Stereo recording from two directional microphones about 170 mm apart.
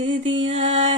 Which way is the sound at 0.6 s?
45° right (ahead or behind).